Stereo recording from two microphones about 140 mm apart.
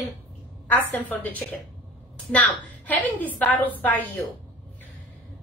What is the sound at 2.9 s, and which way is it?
A woman's voice, 10° left (ahead or behind).